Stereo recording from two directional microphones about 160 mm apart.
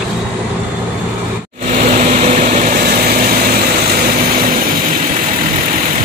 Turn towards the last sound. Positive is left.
turn(degrees=-65)  # may be behind; listen again after turning